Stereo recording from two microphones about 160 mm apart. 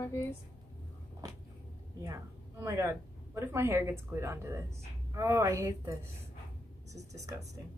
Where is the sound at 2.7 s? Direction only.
20° right (ahead or behind).